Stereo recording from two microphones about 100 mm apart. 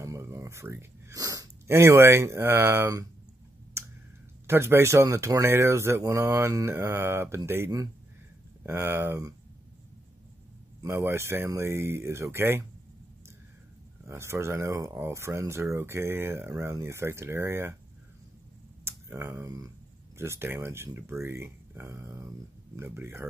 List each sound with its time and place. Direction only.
0.0 s speech: 30° right (ahead or behind)
3.8 s clicking: 25° right (ahead or behind)
4.5 s speech: 25° right (ahead or behind)
10.8 s speech: 30° right (ahead or behind)
14.0 s speech: 25° right (ahead or behind)
18.9 s speech: 25° right (ahead or behind)